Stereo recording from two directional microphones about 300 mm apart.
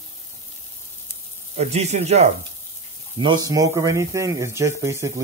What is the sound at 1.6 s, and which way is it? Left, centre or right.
Speech, right.